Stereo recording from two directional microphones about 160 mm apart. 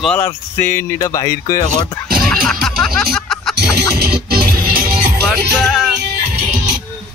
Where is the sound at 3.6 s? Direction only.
85° right; by 5.0 s 65° right (ahead or behind).